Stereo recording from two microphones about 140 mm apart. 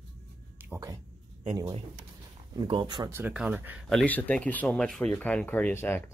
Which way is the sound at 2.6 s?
30° right (ahead or behind).